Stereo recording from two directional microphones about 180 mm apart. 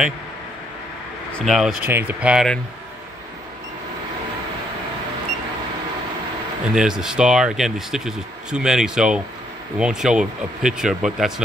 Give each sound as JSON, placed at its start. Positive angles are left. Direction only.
{"t": 1.4, "sound": "speech", "side_deg": 0}
{"t": 6.7, "sound": "speech", "side_deg": -5}